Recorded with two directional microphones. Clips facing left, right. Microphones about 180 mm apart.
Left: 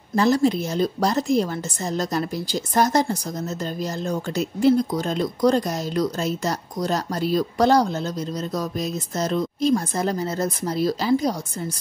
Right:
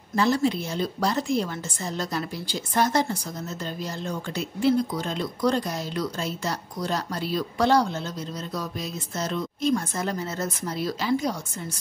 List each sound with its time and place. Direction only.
0.1 s a woman's voice: 40° left (ahead or behind)